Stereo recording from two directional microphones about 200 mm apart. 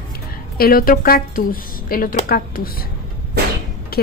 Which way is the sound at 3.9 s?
50° left (ahead or behind).